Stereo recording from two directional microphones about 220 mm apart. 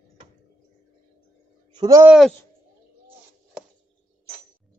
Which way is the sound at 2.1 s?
Centre (ahead or behind).